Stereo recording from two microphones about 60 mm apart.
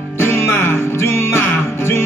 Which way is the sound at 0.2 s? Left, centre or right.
Left.